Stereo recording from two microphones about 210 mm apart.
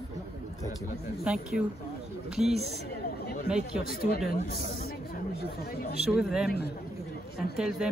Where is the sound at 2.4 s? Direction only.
30° right (ahead or behind).